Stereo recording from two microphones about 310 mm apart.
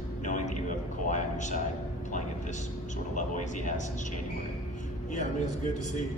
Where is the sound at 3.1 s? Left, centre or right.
Left.